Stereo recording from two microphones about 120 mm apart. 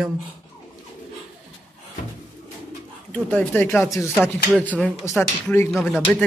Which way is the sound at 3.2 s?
15° left (ahead or behind).